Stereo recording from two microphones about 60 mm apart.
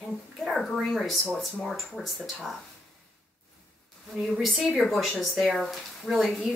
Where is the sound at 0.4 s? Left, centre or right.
Centre.